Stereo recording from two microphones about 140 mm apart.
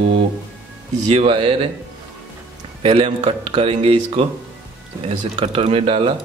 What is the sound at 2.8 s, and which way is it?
A man's voice, 40° right (ahead or behind).